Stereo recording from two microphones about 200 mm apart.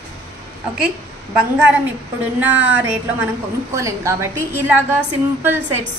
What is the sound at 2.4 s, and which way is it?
A woman's voice, 10° right (ahead or behind).